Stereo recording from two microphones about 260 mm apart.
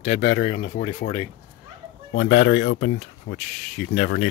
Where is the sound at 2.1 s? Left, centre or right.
Left.